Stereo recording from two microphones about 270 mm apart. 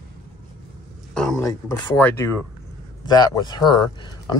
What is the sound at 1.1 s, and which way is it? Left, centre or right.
Speech, centre.